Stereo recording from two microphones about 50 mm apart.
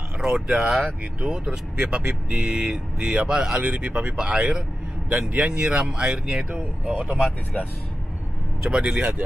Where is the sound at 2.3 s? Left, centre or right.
Centre.